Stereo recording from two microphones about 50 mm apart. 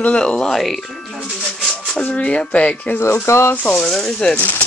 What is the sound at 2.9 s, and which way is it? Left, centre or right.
Speech, left.